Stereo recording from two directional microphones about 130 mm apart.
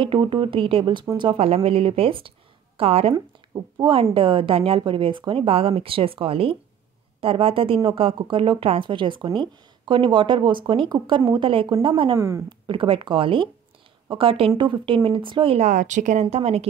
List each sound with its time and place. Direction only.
0.0 s a woman's voice: 40° right (ahead or behind)
3.2 s a woman's voice: 35° right (ahead or behind)
12.2 s speech: 25° right (ahead or behind)
12.4 s speech: 40° right (ahead or behind)
15.6 s a woman's voice: 70° right (ahead or behind); by 16.6 s 50° right (ahead or behind)